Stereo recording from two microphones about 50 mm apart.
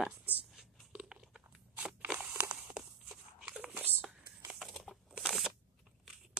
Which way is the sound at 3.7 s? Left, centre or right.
Right.